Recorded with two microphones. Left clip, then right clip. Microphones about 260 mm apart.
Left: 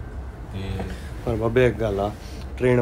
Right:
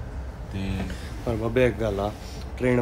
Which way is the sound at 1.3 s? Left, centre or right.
Centre.